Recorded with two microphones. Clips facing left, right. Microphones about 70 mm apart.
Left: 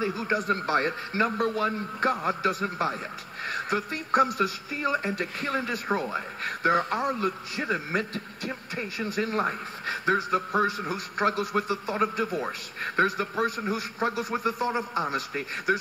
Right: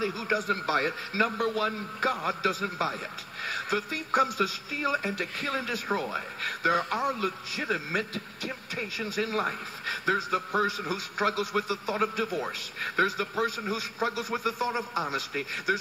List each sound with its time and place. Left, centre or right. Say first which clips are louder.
0.0 s speech: left 2 dB; left
10.9 s a man's voice: left 2 dB; left